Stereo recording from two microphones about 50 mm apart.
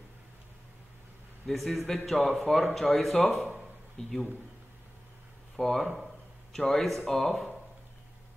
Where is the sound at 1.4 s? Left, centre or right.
Centre.